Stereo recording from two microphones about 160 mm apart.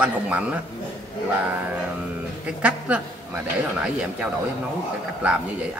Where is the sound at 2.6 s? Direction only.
5° right (ahead or behind).